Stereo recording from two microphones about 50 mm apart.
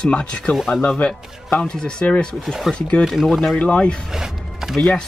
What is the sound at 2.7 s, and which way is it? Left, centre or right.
Speech, centre.